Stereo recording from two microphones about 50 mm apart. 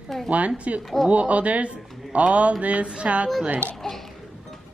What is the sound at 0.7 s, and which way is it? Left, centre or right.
Speech, right.